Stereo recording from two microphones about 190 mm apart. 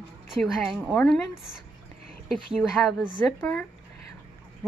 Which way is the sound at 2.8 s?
5° left (ahead or behind).